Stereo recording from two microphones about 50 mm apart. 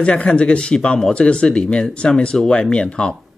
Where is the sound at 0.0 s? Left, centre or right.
Centre.